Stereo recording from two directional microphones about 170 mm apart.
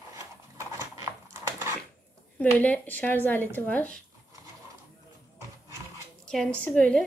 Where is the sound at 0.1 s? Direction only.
20° right (ahead or behind).